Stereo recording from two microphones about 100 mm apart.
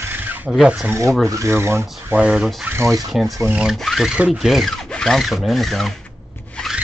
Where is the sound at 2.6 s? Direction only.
30° right (ahead or behind).